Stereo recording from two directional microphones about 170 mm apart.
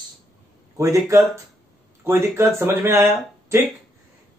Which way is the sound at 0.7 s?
20° right (ahead or behind).